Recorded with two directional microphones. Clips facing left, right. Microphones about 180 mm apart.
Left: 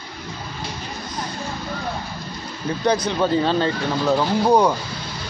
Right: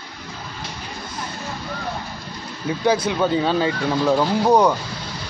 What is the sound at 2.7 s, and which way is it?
Speech, 5° right (ahead or behind).